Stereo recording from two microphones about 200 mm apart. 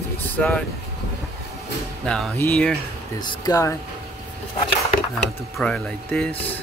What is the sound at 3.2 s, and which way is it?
Speech, 20° left (ahead or behind).